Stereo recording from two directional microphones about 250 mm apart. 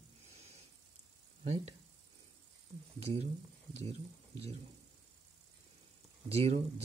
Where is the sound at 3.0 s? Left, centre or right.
Right.